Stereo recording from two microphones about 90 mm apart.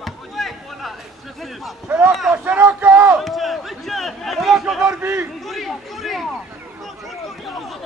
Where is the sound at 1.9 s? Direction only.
20° right (ahead or behind).